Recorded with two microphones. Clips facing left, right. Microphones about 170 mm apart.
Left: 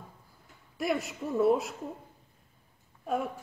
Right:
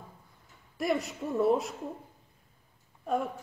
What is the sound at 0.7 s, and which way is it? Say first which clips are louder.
A woman's voice: right 1 dB; centre (ahead or behind).